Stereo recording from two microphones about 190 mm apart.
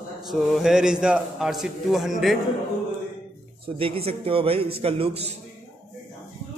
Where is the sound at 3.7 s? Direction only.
30° right (ahead or behind).